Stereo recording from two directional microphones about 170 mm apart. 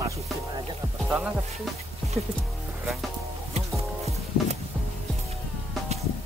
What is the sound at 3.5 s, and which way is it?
Music, 40° right (ahead or behind).